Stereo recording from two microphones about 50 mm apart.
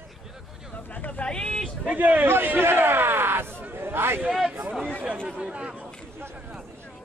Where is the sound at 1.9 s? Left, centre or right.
Right.